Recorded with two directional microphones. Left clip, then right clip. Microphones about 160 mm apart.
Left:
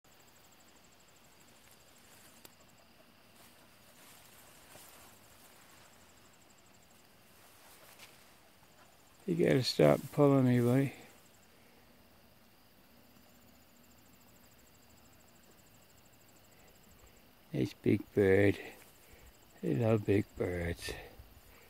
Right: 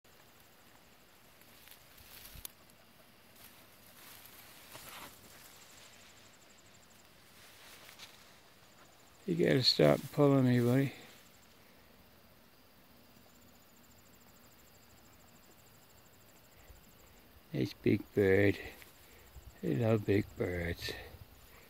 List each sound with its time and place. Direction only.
9.2 s speech: 15° left (ahead or behind)
17.5 s speech: 15° left (ahead or behind)